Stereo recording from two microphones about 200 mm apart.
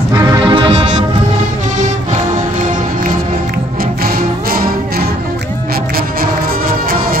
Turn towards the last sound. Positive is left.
turn(degrees=-45)  # may be behind; listen again after turning